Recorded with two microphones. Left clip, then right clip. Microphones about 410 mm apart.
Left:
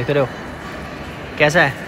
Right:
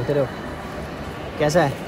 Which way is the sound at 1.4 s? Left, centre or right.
Centre.